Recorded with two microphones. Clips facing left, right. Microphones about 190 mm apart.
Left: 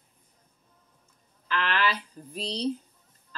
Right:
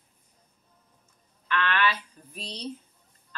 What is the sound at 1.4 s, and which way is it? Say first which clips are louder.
Speech: right 1 dB; 35° left (ahead or behind).